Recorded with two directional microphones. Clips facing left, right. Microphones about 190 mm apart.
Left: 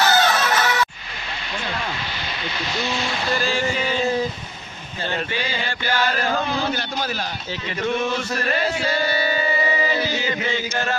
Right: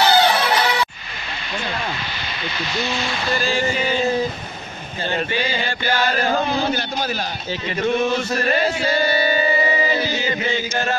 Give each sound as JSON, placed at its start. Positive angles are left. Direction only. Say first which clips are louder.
{"t": 0.0, "sound": "music", "louder": "right 3 dB", "side_deg": -30}
{"t": 0.4, "sound": "music", "louder": "right 2 dB", "side_deg": -15}
{"t": 2.8, "sound": "speech", "louder": "right 1 dB", "side_deg": 0}
{"t": 3.7, "sound": "a sound", "louder": "right 2 dB", "side_deg": -15}
{"t": 5.1, "sound": "chant", "louder": "right 4 dB", "side_deg": -30}
{"t": 8.0, "sound": "music", "louder": "right 4 dB", "side_deg": -25}